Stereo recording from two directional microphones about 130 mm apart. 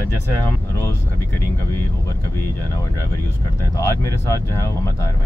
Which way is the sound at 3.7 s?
25° left (ahead or behind).